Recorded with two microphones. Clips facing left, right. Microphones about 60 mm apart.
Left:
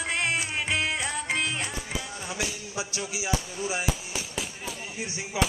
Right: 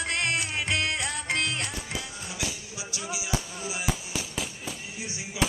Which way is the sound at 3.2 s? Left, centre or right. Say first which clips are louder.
Left 4 dB; left.